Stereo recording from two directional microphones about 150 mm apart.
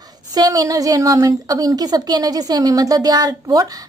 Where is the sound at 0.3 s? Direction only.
25° right (ahead or behind).